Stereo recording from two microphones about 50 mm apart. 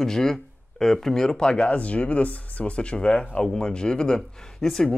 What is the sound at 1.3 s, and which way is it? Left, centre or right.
Speech, left.